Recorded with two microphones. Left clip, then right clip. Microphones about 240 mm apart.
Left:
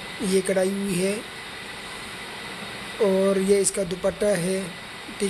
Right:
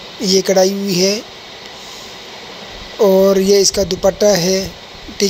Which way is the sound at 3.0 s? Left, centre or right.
Centre.